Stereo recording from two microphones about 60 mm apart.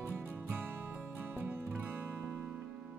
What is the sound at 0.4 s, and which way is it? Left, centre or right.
Music, right.